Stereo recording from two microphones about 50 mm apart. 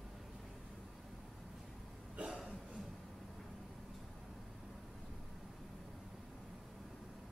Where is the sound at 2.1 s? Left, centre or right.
Centre.